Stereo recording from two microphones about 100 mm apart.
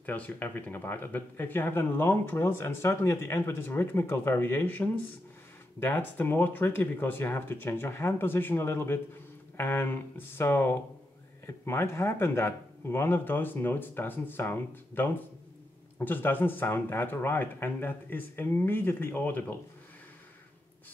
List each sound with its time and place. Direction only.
0.0 s speech: 15° left (ahead or behind)